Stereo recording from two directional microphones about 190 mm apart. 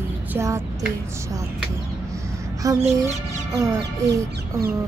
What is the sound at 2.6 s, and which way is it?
Music, 20° right (ahead or behind).